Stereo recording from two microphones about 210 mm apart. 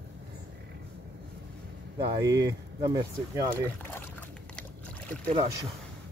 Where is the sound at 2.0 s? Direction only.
20° right (ahead or behind).